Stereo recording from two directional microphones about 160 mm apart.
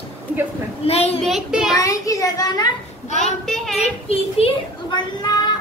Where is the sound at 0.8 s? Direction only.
40° left (ahead or behind).